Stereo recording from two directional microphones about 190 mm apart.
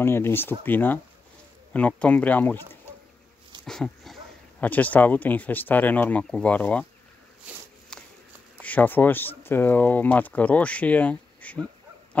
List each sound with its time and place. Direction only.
0.0 s speech: 10° left (ahead or behind)
7.9 s a sound: 5° left (ahead or behind)
8.6 s speech: 10° left (ahead or behind)